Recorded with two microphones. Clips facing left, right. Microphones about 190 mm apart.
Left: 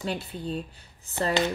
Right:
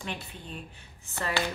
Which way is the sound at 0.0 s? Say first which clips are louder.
Left 7 dB; 35° left (ahead or behind).